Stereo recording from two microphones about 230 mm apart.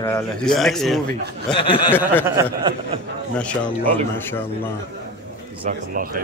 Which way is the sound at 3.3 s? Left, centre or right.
Centre.